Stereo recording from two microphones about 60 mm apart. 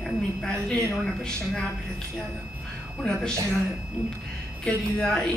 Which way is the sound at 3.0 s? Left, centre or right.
Centre.